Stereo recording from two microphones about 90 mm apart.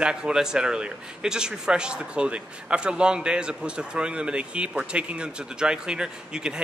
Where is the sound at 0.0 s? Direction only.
10° right (ahead or behind).